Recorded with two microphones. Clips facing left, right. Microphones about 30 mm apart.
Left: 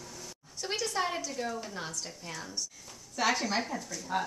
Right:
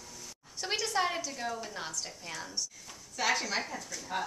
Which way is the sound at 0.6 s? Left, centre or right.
Centre.